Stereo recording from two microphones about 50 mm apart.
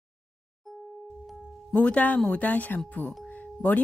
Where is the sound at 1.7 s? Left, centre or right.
Left.